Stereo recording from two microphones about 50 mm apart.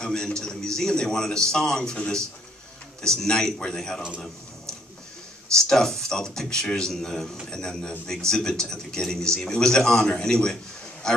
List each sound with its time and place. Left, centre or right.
0.0 s a man's voice: centre
3.0 s a man's voice: centre
5.5 s a man's voice: centre